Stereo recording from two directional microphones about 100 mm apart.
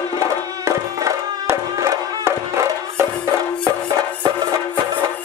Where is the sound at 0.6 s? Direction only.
30° right (ahead or behind).